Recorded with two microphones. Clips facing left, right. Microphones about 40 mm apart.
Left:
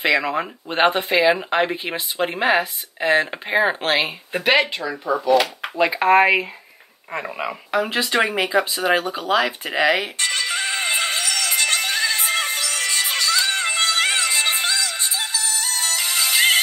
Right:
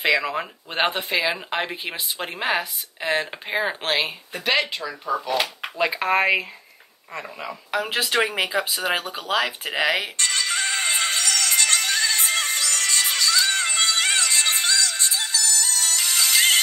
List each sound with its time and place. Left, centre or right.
0.0 s speech: centre
5.6 s speech: centre
7.1 s speech: left
7.7 s speech: centre
8.4 s a sound: centre